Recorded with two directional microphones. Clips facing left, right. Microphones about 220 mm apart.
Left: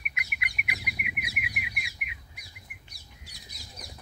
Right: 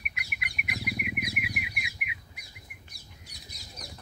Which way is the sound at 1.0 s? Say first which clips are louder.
Right 6 dB; centre (ahead or behind).